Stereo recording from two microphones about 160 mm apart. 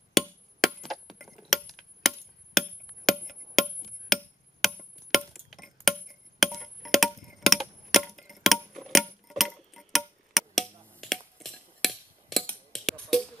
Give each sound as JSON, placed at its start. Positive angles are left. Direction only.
{"t": 1.0, "sound": "coin", "side_deg": 0}
{"t": 3.1, "sound": "music", "side_deg": 0}
{"t": 11.0, "sound": "a sound", "side_deg": 0}